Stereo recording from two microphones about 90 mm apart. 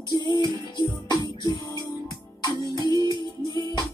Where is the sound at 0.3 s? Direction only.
45° left (ahead or behind).